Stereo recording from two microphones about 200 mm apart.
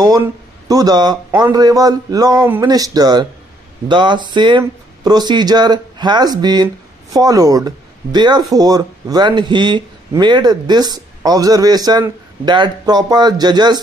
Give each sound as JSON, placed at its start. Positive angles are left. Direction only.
{"t": 0.0, "sound": "speech", "side_deg": -20}